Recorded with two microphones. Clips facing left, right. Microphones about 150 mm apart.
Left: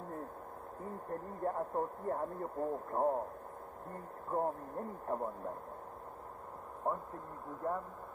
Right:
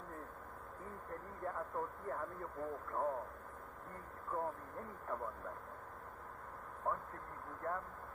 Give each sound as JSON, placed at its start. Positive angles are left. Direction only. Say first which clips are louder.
{"t": 1.1, "sound": "speech", "louder": "left 7 dB", "side_deg": 35}
{"t": 4.3, "sound": "speech", "louder": "left 6 dB", "side_deg": 35}
{"t": 7.6, "sound": "speech", "louder": "left 5 dB", "side_deg": 20}